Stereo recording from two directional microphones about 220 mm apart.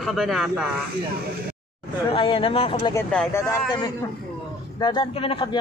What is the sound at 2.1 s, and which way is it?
Speech, 25° left (ahead or behind).